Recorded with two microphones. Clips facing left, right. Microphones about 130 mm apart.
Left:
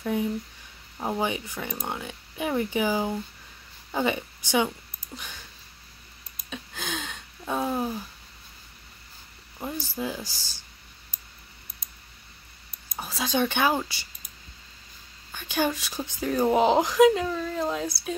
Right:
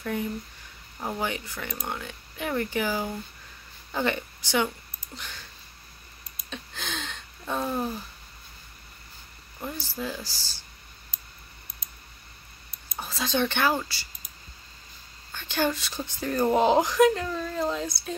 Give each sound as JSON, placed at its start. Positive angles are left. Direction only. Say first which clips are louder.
{"t": 0.0, "sound": "a woman's voice", "louder": "left 3 dB", "side_deg": 15}
{"t": 6.5, "sound": "a sound", "louder": "left 2 dB", "side_deg": 10}
{"t": 9.6, "sound": "speech", "louder": "left 2 dB", "side_deg": 15}
{"t": 13.0, "sound": "speech", "louder": "left 1 dB", "side_deg": 10}
{"t": 15.3, "sound": "speech", "louder": "even", "side_deg": 10}